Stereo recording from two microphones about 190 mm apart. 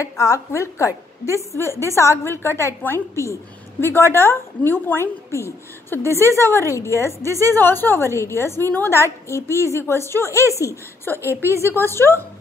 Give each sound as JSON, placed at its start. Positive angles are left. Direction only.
{"t": 0.0, "sound": "a woman's voice", "side_deg": 15}
{"t": 6.0, "sound": "a woman's voice", "side_deg": -15}
{"t": 6.7, "sound": "a woman's voice", "side_deg": 15}